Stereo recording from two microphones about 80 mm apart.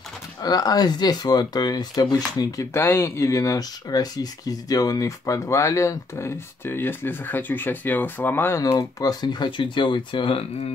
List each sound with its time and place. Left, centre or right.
0.4 s speech: left
2.7 s speech: left
8.6 s speech: left